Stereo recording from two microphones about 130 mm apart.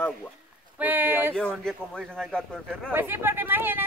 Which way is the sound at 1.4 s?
5° left (ahead or behind).